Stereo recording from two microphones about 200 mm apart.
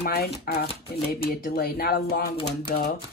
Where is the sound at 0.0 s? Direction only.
50° left (ahead or behind).